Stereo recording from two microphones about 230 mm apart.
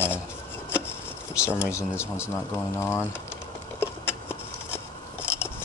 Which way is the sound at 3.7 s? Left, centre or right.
Centre.